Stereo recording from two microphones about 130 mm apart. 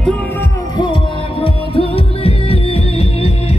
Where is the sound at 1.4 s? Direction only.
45° left (ahead or behind).